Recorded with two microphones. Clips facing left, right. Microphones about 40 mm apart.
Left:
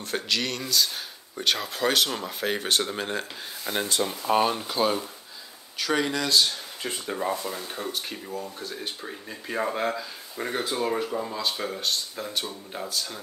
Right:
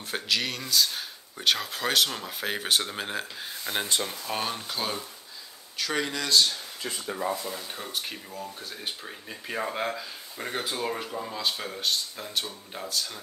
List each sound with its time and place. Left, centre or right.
0.0 s speech: centre
4.0 s speech: centre
7.1 s speech: centre
7.6 s speech: centre